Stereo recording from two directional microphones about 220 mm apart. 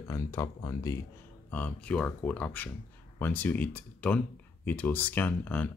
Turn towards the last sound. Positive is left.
turn(degrees=5)  # may be behind; listen again after turning